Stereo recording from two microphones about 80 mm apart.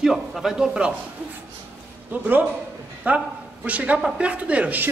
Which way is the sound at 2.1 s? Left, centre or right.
Right.